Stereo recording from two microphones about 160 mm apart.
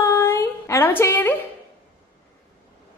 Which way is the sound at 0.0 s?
15° left (ahead or behind).